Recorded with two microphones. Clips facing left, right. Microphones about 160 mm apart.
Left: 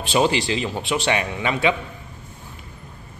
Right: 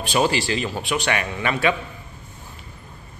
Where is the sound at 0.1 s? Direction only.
20° left (ahead or behind).